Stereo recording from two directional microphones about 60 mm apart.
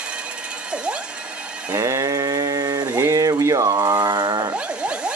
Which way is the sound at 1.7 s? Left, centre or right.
Right.